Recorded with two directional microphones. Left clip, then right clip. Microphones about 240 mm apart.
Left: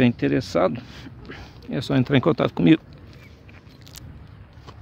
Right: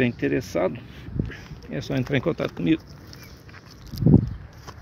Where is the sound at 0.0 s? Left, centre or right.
Left.